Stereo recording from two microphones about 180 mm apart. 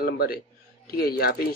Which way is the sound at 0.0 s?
60° left (ahead or behind).